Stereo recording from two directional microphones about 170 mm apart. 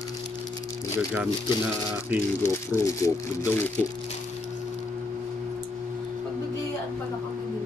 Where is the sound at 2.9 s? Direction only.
20° left (ahead or behind).